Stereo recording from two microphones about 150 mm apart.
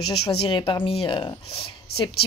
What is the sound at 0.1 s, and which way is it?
Speech, 40° left (ahead or behind).